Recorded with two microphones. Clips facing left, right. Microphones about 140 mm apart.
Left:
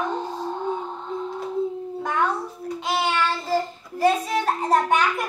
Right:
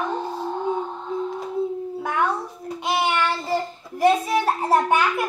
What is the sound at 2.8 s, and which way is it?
A child's voice, 15° right (ahead or behind).